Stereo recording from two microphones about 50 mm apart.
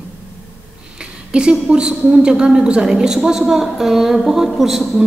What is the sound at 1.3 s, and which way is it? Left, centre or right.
A woman's voice, centre.